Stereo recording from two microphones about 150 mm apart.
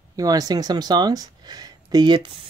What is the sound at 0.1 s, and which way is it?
Speech, 25° right (ahead or behind).